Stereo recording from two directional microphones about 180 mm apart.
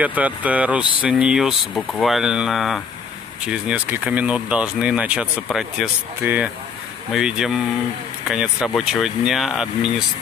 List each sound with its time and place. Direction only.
0.0 s speech: 10° right (ahead or behind)